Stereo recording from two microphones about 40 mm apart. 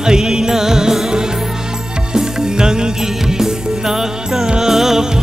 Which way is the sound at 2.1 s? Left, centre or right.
Centre.